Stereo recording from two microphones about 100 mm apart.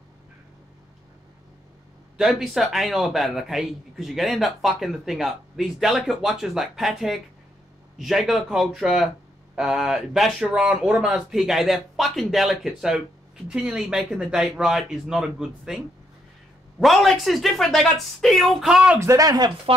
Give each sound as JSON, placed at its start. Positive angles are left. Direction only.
{"t": 2.1, "sound": "a man's voice", "side_deg": -5}
{"t": 16.8, "sound": "a man's voice", "side_deg": 0}
{"t": 18.9, "sound": "speech", "side_deg": -35}